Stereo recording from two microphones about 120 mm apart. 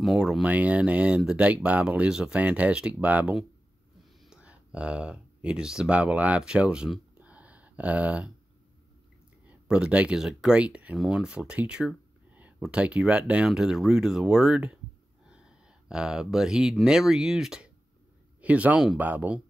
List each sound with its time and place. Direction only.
0.0 s speech: centre (ahead or behind)
9.5 s speech: 10° right (ahead or behind)